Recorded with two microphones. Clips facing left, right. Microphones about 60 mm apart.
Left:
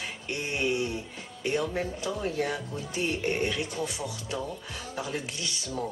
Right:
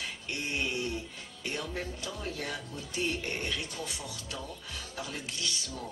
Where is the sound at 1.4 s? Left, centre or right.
Left.